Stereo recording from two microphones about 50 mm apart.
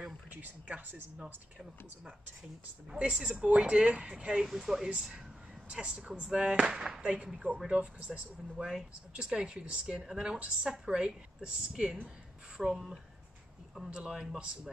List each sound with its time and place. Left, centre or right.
0.3 s speech: right
1.2 s speech: centre
3.0 s a woman's voice: right
4.4 s a woman's voice: centre
13.8 s a woman's voice: centre